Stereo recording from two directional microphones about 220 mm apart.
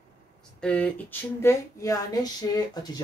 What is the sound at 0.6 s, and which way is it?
Speech, 5° left (ahead or behind).